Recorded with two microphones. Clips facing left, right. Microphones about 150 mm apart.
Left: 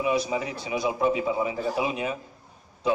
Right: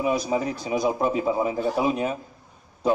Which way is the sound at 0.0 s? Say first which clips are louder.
Right 2 dB; 40° right (ahead or behind).